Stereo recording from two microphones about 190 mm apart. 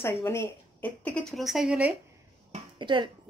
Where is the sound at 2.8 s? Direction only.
25° right (ahead or behind).